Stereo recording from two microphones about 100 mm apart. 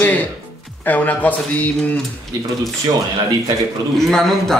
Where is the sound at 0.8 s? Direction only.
15° left (ahead or behind).